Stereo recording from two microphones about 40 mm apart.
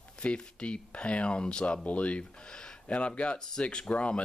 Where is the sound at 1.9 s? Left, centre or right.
Left.